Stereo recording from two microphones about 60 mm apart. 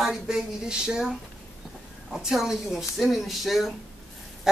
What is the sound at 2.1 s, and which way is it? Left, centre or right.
Speech, centre.